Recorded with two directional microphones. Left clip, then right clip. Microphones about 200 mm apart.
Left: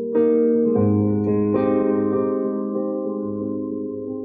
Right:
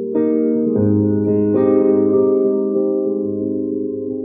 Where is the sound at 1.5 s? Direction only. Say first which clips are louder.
Right 8 dB; 5° left (ahead or behind).